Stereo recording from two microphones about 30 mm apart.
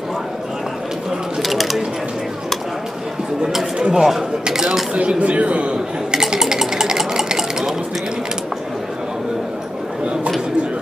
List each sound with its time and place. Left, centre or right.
1.4 s a sound: centre
3.9 s speech: centre
5.2 s a man's voice: right
6.4 s stir: centre